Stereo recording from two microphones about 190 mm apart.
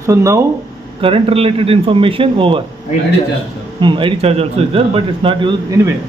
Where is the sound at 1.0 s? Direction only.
30° right (ahead or behind).